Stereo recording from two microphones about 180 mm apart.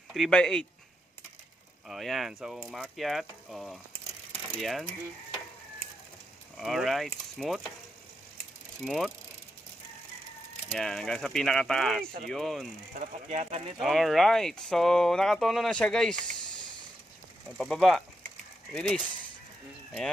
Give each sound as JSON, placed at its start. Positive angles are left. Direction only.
{"t": 0.1, "sound": "speech", "side_deg": 5}
{"t": 1.9, "sound": "speech", "side_deg": 0}
{"t": 6.5, "sound": "speech", "side_deg": 0}
{"t": 8.8, "sound": "speech", "side_deg": 0}
{"t": 10.7, "sound": "speech", "side_deg": 0}
{"t": 12.9, "sound": "speech", "side_deg": -45}
{"t": 13.7, "sound": "speech", "side_deg": 0}
{"t": 17.6, "sound": "speech", "side_deg": 0}